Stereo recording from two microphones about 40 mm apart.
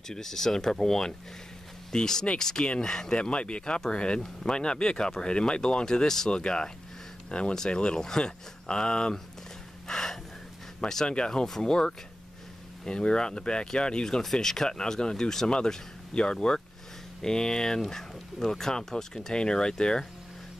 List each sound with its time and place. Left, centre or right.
0.1 s speech: centre
2.6 s speech: left
6.0 s speech: centre
9.8 s gasp: centre
10.8 s speech: centre
11.1 s speech: left
14.2 s speech: centre